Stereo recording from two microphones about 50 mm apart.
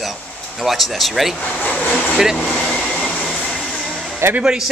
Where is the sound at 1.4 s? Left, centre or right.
Left.